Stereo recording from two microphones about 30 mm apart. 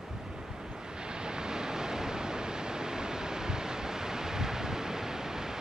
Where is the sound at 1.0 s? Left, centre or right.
Right.